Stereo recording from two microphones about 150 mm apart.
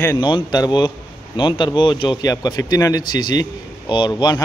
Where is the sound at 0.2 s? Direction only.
30° left (ahead or behind).